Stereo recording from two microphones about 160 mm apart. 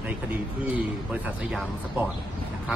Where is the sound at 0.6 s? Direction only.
10° right (ahead or behind).